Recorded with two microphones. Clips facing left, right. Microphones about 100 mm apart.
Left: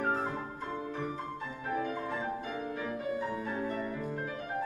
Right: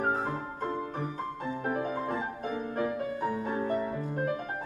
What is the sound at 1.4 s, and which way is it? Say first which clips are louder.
Music: right 4 dB; 45° right (ahead or behind).